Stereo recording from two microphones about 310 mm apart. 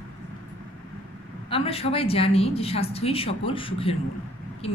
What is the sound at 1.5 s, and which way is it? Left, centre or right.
A woman's voice, centre.